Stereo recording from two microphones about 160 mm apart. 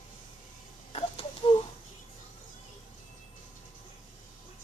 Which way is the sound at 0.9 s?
35° left (ahead or behind).